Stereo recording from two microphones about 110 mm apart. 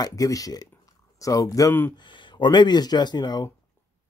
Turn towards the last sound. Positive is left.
turn(degrees=40)  # may be behind; listen again after turning